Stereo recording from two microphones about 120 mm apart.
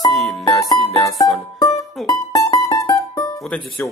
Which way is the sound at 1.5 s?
30° left (ahead or behind).